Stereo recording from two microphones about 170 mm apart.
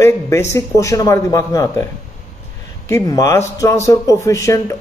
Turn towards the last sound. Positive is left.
turn(degrees=20)  # may be behind; listen again after turning